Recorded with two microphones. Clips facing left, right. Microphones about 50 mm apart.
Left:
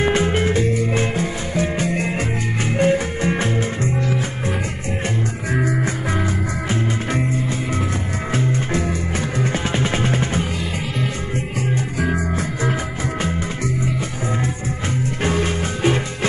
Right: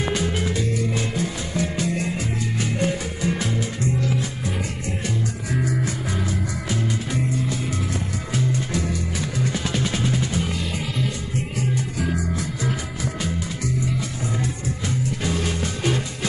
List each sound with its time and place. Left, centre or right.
0.0 s music: left
5.5 s music: left
11.7 s music: left
15.2 s music: left